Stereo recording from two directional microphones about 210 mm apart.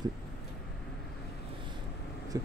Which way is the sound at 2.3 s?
15° right (ahead or behind).